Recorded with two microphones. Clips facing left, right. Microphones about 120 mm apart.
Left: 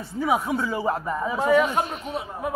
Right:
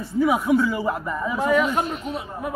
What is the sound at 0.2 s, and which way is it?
A man's voice, 30° left (ahead or behind).